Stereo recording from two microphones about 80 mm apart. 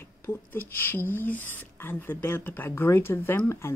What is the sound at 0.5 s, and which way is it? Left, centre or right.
Speech, left.